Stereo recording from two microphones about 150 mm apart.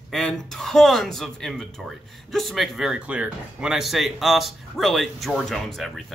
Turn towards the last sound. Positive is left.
turn(degrees=0)  # may be behind; listen again after turning